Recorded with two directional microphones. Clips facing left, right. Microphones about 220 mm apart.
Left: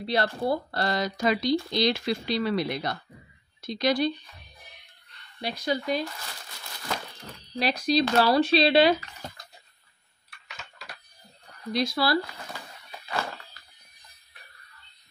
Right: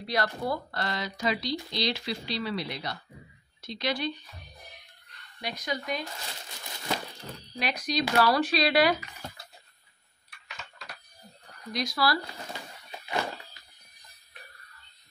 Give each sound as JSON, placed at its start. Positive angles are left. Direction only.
{"t": 0.0, "sound": "speech", "side_deg": 30}
{"t": 5.4, "sound": "speech", "side_deg": 30}
{"t": 7.5, "sound": "speech", "side_deg": 30}
{"t": 11.7, "sound": "speech", "side_deg": 25}
{"t": 12.3, "sound": "a sound", "side_deg": -20}